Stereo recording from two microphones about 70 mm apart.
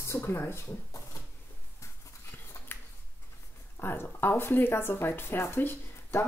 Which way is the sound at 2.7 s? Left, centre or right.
Left.